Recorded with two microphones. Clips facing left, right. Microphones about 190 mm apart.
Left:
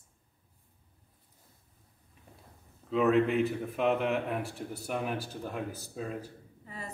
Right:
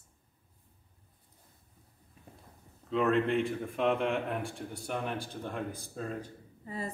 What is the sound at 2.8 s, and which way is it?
Speech, 5° left (ahead or behind).